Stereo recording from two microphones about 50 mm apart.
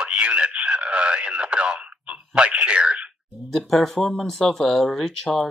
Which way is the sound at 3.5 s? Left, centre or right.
Centre.